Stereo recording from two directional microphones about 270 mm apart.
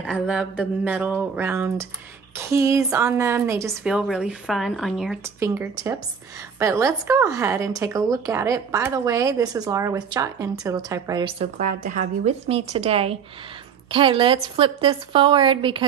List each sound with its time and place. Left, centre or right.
0.0 s a woman's voice: centre